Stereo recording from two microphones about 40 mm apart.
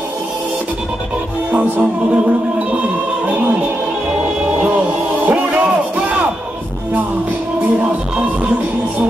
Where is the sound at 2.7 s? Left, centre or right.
Right.